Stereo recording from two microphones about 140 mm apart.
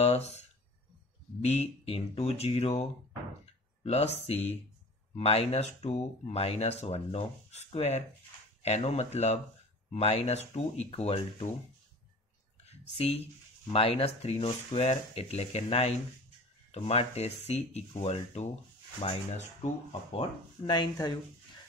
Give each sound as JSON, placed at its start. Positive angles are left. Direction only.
{"t": 0.0, "sound": "a sound", "side_deg": 50}
{"t": 1.4, "sound": "speech", "side_deg": 50}
{"t": 12.6, "sound": "speech", "side_deg": 45}